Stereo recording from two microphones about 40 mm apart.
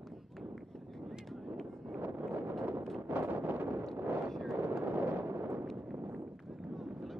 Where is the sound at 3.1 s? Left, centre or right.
Right.